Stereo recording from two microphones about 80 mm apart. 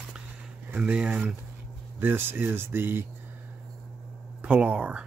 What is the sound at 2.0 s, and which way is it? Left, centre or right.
Speech, right.